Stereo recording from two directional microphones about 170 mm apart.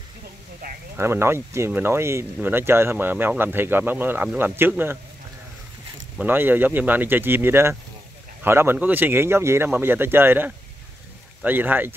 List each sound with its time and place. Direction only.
0.6 s a sound: 65° right (ahead or behind)
0.9 s speech: 15° right (ahead or behind)
6.1 s speech: 10° right (ahead or behind)